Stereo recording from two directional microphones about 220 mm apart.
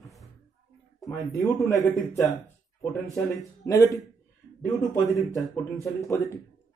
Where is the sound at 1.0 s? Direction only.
15° left (ahead or behind).